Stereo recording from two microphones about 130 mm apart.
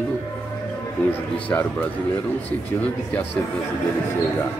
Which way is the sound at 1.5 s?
15° left (ahead or behind).